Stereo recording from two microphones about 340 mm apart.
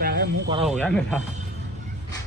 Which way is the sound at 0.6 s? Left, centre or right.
Centre.